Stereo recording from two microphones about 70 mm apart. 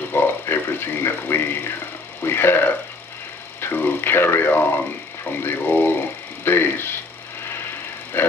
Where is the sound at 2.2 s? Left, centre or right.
Left.